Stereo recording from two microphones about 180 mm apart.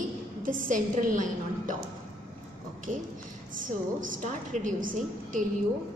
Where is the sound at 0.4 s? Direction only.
50° right (ahead or behind).